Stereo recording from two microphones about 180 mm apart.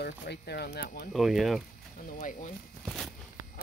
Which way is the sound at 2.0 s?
45° left (ahead or behind).